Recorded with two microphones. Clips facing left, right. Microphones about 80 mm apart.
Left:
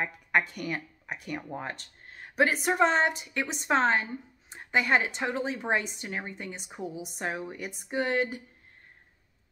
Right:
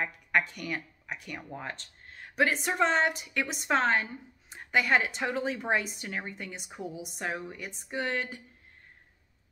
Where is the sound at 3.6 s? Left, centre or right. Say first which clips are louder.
Left 2 dB; centre.